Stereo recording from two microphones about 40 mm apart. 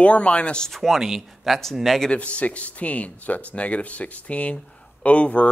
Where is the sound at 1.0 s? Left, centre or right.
Centre.